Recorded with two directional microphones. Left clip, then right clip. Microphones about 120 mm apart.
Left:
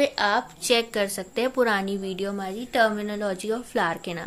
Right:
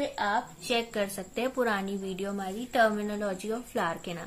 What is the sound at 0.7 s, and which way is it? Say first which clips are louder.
A woman's voice: left 7 dB; 40° left (ahead or behind).